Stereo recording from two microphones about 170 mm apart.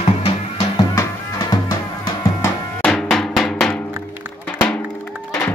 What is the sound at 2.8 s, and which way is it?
Drum, centre (ahead or behind).